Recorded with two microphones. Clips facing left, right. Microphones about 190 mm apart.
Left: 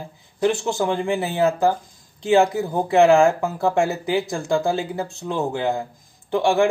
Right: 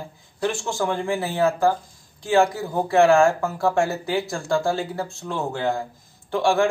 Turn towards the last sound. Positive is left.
turn(degrees=15)  # may be behind; listen again after turning